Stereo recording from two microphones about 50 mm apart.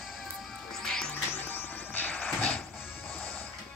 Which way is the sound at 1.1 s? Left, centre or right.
Left.